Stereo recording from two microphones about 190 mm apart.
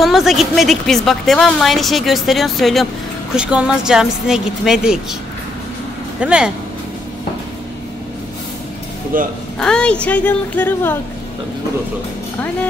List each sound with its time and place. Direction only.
0.0 s a woman's voice: centre (ahead or behind)
6.2 s a woman's voice: 5° right (ahead or behind)
9.1 s speech: 45° right (ahead or behind)
9.6 s speech: 5° left (ahead or behind)